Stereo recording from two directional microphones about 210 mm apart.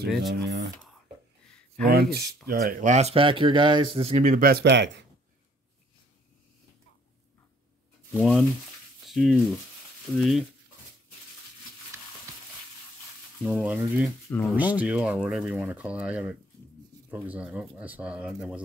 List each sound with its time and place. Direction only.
0.4 s speech: 50° right (ahead or behind)
1.9 s speech: 50° right (ahead or behind)
8.1 s speech: 5° right (ahead or behind)
13.4 s speech: 5° right (ahead or behind)
14.3 s speech: 5° left (ahead or behind)
14.6 s speech: 5° right (ahead or behind)